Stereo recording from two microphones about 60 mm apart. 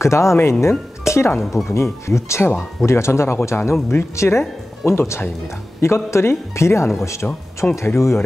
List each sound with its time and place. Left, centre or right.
0.0 s speech: left
7.2 s speech: left
7.7 s speech: left